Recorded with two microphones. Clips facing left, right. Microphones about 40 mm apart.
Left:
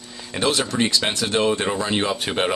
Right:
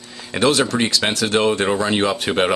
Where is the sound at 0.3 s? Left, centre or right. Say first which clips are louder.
Right 4 dB; right.